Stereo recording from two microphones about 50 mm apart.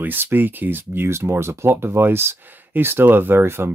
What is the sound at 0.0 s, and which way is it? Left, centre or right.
Speech, right.